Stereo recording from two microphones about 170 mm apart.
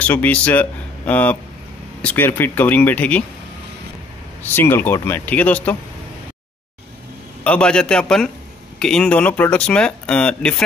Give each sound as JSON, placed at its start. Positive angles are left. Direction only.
{"t": 0.0, "sound": "speech", "side_deg": 10}
{"t": 4.4, "sound": "speech", "side_deg": 10}
{"t": 7.4, "sound": "a man's voice", "side_deg": 5}